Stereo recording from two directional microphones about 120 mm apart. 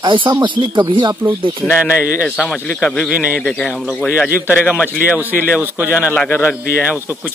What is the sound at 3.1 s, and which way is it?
Speech, 10° right (ahead or behind).